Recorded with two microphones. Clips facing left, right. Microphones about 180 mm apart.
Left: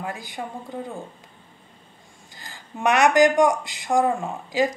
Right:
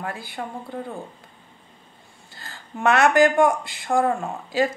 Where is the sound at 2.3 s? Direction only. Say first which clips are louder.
Right 2 dB; 15° left (ahead or behind).